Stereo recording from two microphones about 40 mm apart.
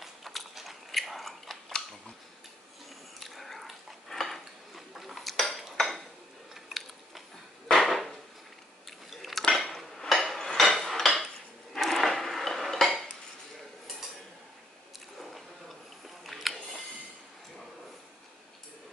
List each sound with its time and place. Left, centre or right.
0.0 s biting: centre
3.2 s dog: centre
5.3 s cutlery: centre
5.8 s dishes: centre
6.5 s a sound: centre
9.1 s dishes: centre
10.9 s cutlery: centre
11.7 s dishes: centre
16.3 s music: centre